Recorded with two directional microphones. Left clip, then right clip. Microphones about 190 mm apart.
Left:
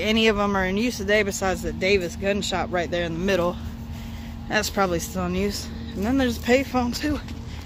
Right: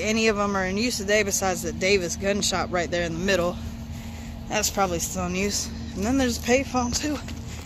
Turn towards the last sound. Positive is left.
turn(degrees=15)  # may be behind; listen again after turning